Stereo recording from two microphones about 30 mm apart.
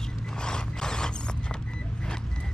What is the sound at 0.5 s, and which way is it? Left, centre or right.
Mechanisms, left.